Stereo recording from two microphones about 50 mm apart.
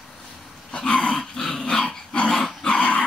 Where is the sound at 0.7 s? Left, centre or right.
Centre.